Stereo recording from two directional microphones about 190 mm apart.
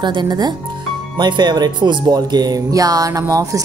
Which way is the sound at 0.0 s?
25° right (ahead or behind).